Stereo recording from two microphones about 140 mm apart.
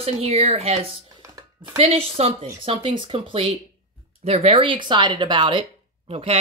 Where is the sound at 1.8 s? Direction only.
45° right (ahead or behind).